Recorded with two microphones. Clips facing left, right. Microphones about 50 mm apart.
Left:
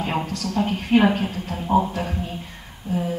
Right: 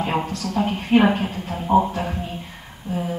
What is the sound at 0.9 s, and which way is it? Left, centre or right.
Speech, right.